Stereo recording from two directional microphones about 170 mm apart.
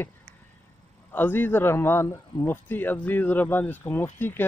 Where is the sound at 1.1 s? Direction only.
10° left (ahead or behind).